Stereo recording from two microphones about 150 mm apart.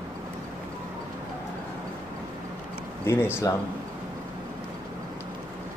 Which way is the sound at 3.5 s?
25° left (ahead or behind).